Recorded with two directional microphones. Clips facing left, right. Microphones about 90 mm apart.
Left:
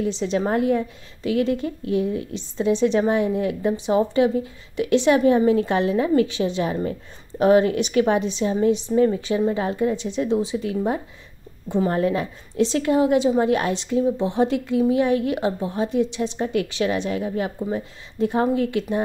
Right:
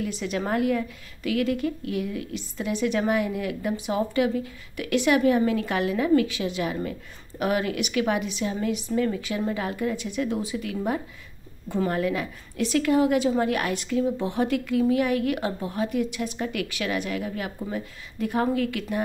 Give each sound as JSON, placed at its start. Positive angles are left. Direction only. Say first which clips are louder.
{"t": 0.0, "sound": "a woman's voice", "louder": "left 6 dB", "side_deg": 25}